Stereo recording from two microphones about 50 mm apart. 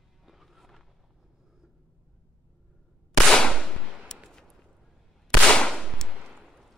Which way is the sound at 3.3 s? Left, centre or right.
Centre.